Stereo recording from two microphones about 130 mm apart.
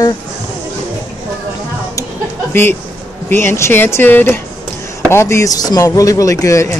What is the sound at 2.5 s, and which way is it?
Speech, 20° left (ahead or behind).